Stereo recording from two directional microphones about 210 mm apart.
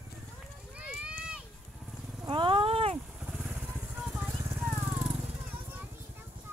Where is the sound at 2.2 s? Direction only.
25° right (ahead or behind).